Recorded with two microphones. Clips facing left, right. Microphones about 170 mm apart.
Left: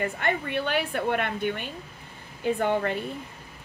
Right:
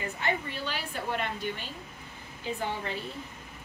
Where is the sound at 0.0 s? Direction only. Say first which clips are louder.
Left 4 dB; 60° left (ahead or behind).